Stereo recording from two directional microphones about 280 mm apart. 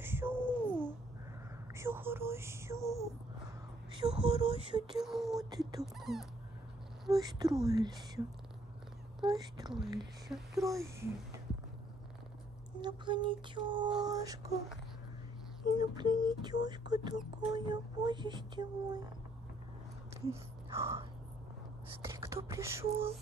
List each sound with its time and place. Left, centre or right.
0.0 s a sound: centre
4.0 s speech: centre
4.9 s speech: centre
7.1 s speech: centre
9.3 s speech: centre
10.2 s speech: centre
12.8 s speech: centre
15.6 s speech: centre
20.2 s speech: centre